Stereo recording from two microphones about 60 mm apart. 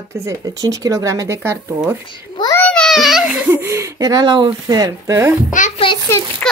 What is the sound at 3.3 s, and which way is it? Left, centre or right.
Speech, right.